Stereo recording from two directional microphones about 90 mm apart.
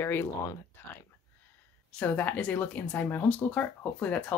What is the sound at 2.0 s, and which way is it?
Speech, 20° left (ahead or behind).